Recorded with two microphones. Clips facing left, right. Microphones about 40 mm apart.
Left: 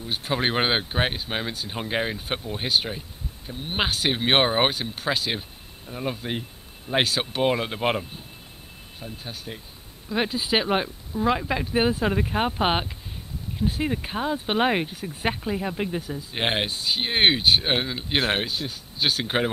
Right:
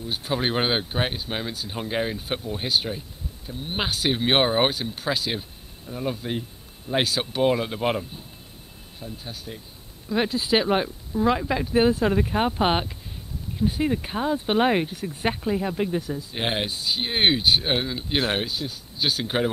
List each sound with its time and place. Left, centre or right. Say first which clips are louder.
0.0 s speech: left 1 dB; left
10.0 s speech: right 1 dB; centre